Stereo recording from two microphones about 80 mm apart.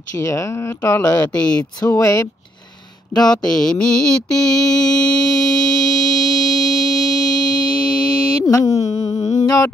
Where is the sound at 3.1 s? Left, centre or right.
Left.